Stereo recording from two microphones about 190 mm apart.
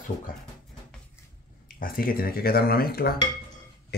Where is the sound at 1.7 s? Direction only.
50° left (ahead or behind).